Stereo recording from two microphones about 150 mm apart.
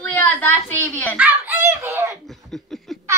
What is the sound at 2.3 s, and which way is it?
Snicker, centre (ahead or behind).